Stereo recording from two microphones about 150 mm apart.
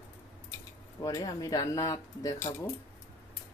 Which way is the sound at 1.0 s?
25° left (ahead or behind).